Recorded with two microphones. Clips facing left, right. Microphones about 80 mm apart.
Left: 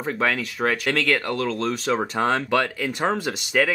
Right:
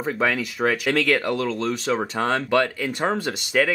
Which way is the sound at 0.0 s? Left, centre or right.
Centre.